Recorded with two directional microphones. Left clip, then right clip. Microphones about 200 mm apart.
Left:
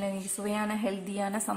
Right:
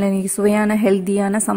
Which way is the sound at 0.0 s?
40° right (ahead or behind).